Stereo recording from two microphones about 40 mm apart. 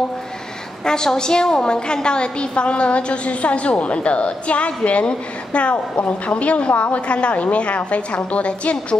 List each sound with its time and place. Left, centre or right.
0.8 s a woman's voice: centre; by 8.7 s left